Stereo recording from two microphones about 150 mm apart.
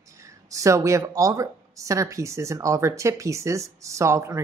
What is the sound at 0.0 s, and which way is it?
Speech, 20° right (ahead or behind).